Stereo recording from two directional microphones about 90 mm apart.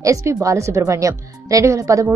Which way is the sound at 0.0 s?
35° right (ahead or behind).